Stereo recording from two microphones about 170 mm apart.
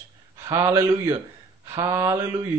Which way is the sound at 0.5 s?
15° right (ahead or behind).